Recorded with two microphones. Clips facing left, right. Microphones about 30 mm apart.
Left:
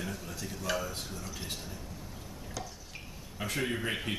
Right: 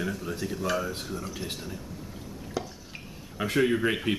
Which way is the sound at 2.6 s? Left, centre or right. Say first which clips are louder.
Right 8 dB; right.